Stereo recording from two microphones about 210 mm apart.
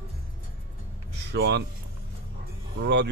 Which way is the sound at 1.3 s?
55° right (ahead or behind).